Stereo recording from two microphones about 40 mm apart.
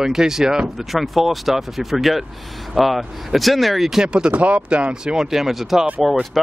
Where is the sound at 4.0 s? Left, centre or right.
Right.